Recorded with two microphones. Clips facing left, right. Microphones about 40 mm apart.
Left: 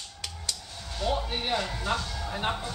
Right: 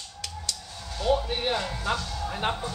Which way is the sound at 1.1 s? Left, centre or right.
Centre.